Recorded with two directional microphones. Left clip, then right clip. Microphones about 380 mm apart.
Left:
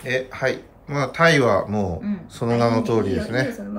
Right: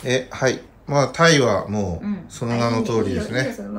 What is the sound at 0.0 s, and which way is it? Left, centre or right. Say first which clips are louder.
A child's voice: right 2 dB; centre.